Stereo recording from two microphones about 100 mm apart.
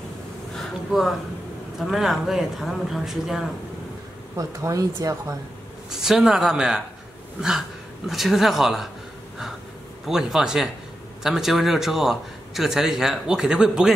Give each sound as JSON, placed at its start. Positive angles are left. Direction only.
{"t": 0.6, "sound": "a sound", "side_deg": 0}
{"t": 1.8, "sound": "a man's voice", "side_deg": -5}
{"t": 4.4, "sound": "speech", "side_deg": -35}
{"t": 5.9, "sound": "a man's voice", "side_deg": -5}
{"t": 8.1, "sound": "a man's voice", "side_deg": 0}
{"t": 10.0, "sound": "a man's voice", "side_deg": -5}